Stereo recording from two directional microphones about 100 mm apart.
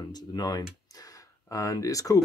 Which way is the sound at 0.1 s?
45° left (ahead or behind).